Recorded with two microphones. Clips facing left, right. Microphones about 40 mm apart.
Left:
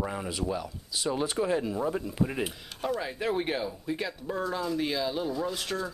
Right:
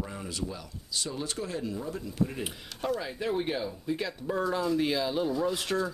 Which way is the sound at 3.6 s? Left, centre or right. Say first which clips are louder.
Even; centre.